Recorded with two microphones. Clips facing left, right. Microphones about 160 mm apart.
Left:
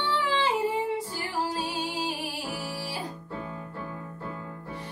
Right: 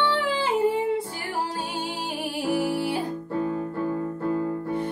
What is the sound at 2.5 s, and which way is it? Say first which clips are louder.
Music: right 11 dB; 50° right (ahead or behind).